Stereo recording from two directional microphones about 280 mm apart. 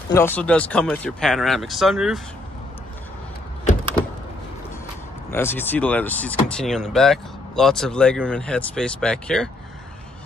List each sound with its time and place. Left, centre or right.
0.1 s speech: centre
5.3 s speech: centre